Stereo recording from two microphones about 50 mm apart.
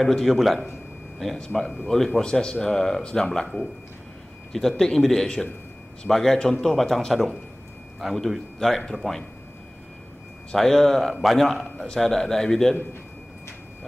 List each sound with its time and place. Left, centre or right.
0.0 s a man's voice: centre
1.4 s speech: centre
4.5 s a man's voice: centre
10.5 s a man's voice: centre